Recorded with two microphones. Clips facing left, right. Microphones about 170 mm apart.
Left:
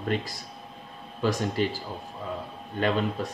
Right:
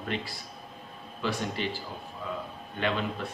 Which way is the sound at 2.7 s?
40° left (ahead or behind).